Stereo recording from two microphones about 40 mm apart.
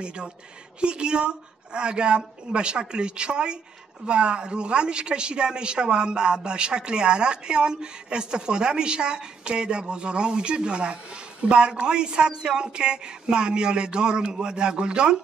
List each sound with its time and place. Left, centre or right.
0.0 s a woman's voice: right